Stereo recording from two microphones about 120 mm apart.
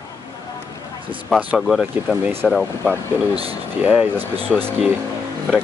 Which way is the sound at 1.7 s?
5° right (ahead or behind).